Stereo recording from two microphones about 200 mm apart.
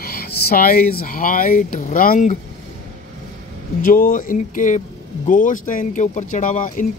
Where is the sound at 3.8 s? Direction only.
40° left (ahead or behind).